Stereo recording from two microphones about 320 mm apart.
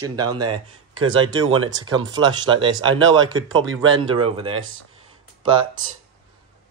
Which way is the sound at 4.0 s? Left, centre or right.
Centre.